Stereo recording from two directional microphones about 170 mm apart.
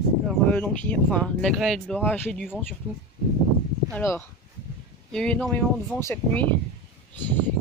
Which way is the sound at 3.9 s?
10° left (ahead or behind).